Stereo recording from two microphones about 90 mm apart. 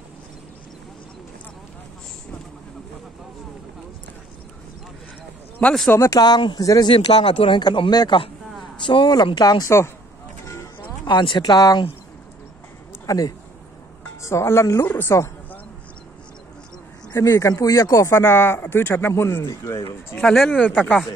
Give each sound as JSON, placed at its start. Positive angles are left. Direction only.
{"t": 5.9, "sound": "speech", "side_deg": 30}
{"t": 6.1, "sound": "speech", "side_deg": 50}
{"t": 6.9, "sound": "speech", "side_deg": 90}
{"t": 7.6, "sound": "speech", "side_deg": 70}
{"t": 7.9, "sound": "speech", "side_deg": 45}
{"t": 8.7, "sound": "speech", "side_deg": 60}
{"t": 11.1, "sound": "speech", "side_deg": 60}
{"t": 13.0, "sound": "speech", "side_deg": 40}
{"t": 14.2, "sound": "speech", "side_deg": 30}
{"t": 17.1, "sound": "speech", "side_deg": 35}
{"t": 20.4, "sound": "speech", "side_deg": 20}